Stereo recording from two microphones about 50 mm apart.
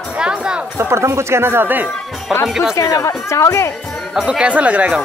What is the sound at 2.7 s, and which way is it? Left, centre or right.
Speech, left.